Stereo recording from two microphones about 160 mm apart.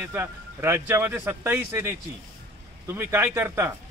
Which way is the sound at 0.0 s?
15° right (ahead or behind).